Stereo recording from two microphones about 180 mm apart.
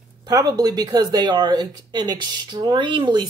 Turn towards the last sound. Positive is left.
turn(degrees=-25)  # may be behind; listen again after turning